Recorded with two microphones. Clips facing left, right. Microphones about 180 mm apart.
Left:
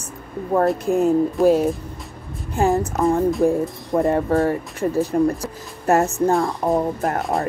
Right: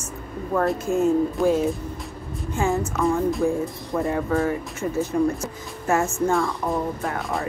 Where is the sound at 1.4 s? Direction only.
Centre (ahead or behind).